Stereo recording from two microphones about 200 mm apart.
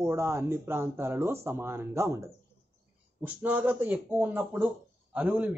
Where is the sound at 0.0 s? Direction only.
15° right (ahead or behind).